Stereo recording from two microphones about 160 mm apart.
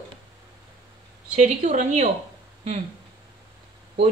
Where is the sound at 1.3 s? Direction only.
50° right (ahead or behind).